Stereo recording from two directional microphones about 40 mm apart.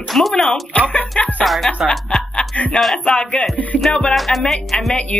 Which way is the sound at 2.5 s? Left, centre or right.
Left.